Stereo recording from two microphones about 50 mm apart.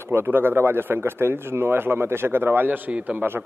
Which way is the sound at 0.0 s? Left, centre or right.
Right.